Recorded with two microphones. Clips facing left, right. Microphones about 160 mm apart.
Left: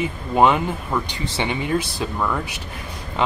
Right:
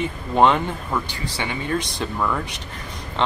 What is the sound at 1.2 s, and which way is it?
Speech, 20° left (ahead or behind).